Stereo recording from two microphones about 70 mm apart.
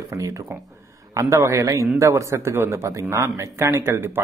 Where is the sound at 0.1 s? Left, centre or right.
Right.